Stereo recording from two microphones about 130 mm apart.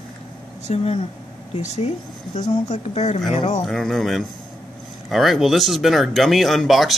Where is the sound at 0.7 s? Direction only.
55° left (ahead or behind).